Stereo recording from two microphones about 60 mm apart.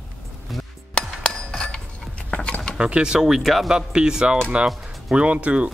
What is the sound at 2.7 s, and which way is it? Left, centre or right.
Speech, centre.